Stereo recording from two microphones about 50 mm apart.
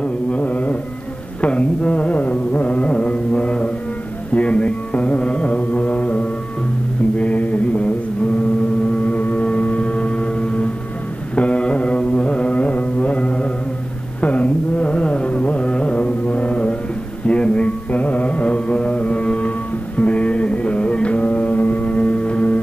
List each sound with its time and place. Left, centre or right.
0.0 s carnatic music: left
7.2 s mantra: left
9.0 s a sound: left
11.3 s carnatic music: left
17.3 s music: left